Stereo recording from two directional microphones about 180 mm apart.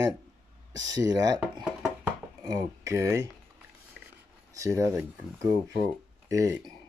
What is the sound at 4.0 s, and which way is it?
Rub, 5° right (ahead or behind).